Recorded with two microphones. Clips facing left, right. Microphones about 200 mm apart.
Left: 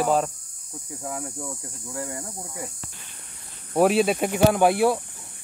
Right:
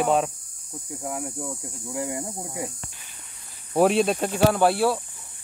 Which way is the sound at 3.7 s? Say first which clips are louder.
Even; centre (ahead or behind).